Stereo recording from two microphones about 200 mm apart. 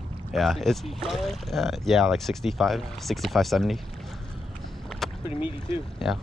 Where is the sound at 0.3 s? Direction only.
Centre (ahead or behind).